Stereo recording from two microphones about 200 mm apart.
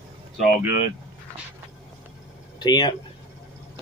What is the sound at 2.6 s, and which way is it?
Speech, 20° left (ahead or behind).